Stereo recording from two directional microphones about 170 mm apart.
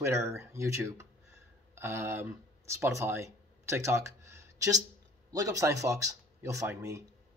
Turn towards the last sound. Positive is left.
turn(degrees=-20)  # may be behind; listen again after turning